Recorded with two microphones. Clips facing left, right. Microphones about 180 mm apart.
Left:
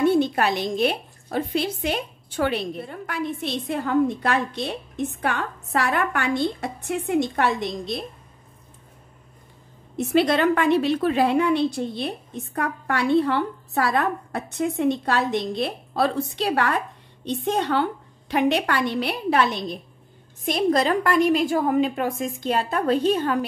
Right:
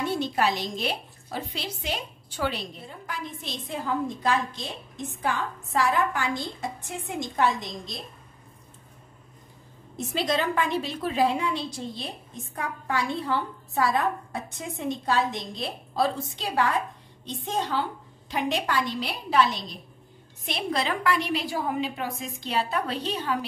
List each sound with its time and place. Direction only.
0.0 s a woman's voice: 55° left (ahead or behind)
9.9 s a woman's voice: 65° left (ahead or behind)
20.4 s a woman's voice: 45° left (ahead or behind)